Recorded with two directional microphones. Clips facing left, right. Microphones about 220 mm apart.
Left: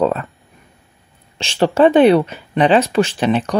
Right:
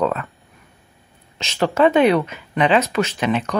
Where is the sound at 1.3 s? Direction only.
30° left (ahead or behind).